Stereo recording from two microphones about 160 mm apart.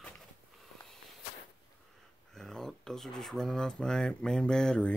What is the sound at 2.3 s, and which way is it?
Speech, 5° left (ahead or behind).